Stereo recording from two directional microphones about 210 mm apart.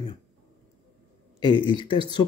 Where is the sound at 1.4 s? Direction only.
20° left (ahead or behind).